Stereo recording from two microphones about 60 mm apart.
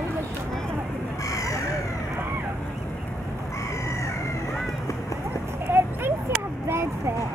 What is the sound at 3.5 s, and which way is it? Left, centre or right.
Chicken, left.